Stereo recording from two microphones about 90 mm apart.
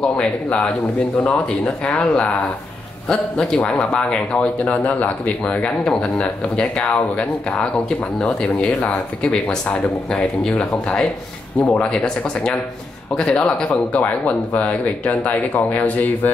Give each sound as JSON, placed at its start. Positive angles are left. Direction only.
{"t": 0.0, "sound": "a man's voice", "side_deg": 10}